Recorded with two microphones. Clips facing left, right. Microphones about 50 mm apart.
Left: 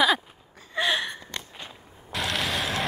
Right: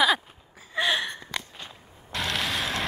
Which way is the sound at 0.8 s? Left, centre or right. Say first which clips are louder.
Even; centre.